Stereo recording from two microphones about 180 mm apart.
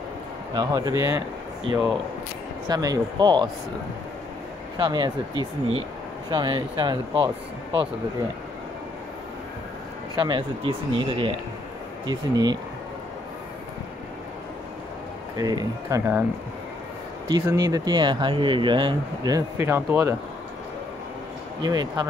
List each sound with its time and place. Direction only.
0.6 s speech: 20° right (ahead or behind)
2.7 s speech: 20° right (ahead or behind)
4.7 s speech: 25° right (ahead or behind)
10.1 s speech: 30° right (ahead or behind)
15.3 s speech: 20° right (ahead or behind)
17.3 s speech: 20° right (ahead or behind)
21.5 s speech: 25° right (ahead or behind)